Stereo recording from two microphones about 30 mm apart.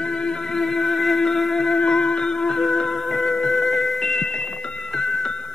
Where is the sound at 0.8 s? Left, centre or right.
Centre.